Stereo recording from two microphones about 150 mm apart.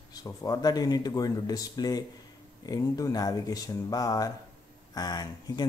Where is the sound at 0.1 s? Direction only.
25° left (ahead or behind).